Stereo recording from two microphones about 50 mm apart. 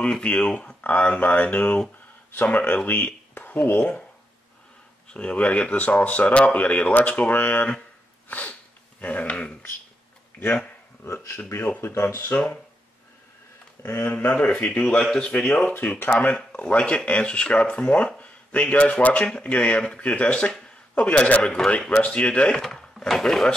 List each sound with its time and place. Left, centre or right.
0.2 s speech: left
2.6 s speech: left
3.3 s a sound: left
5.1 s speech: left
8.3 s sneeze: left
9.0 s speech: left
11.8 s speech: left
13.8 s speech: left
14.1 s speech: left
22.6 s speech: centre